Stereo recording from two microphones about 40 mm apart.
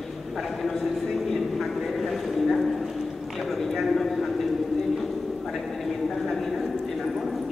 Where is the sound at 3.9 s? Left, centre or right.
Centre.